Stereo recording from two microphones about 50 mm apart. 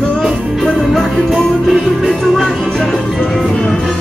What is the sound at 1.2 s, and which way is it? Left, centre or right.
Music, centre.